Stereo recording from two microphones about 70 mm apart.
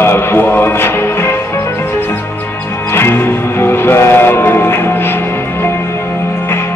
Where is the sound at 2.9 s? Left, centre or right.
Left.